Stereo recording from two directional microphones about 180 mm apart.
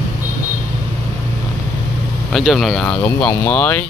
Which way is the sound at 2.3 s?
Centre (ahead or behind).